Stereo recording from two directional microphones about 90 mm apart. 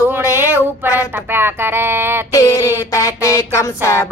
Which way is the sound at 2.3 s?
40° left (ahead or behind).